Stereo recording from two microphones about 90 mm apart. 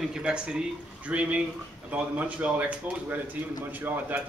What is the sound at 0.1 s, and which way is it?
A man's voice, 10° right (ahead or behind).